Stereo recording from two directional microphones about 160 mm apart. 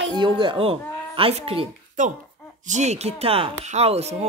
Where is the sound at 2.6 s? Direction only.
45° right (ahead or behind).